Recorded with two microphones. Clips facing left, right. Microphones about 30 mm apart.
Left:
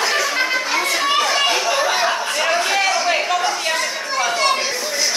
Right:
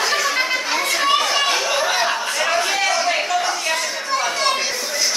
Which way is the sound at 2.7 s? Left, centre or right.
Centre.